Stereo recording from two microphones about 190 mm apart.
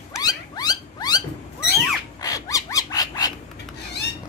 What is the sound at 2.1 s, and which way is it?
Wild animals, 20° left (ahead or behind).